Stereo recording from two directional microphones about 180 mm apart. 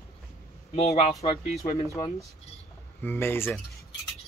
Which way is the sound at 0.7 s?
35° left (ahead or behind).